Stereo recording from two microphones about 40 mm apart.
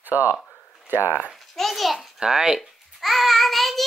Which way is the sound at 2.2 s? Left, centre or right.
Centre.